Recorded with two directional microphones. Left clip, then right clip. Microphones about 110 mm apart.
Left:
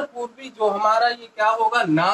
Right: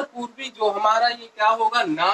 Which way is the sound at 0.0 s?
30° left (ahead or behind).